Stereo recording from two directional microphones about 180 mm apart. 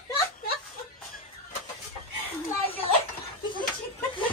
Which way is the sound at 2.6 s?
30° left (ahead or behind).